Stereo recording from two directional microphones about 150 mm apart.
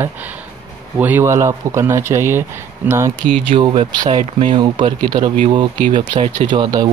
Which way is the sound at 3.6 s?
35° right (ahead or behind).